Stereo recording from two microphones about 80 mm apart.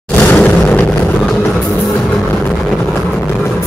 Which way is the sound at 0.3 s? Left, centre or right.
Centre.